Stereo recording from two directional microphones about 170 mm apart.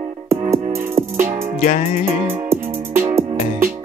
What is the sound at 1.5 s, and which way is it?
Music, 45° left (ahead or behind).